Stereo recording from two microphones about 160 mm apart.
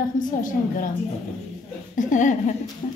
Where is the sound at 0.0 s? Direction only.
55° left (ahead or behind).